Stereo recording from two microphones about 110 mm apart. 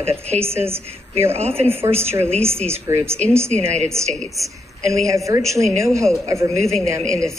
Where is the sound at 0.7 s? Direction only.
20° right (ahead or behind).